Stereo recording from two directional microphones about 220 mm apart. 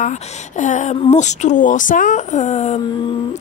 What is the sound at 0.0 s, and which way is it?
A woman's voice, 35° left (ahead or behind).